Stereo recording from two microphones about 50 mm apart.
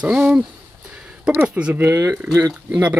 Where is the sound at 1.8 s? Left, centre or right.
Right.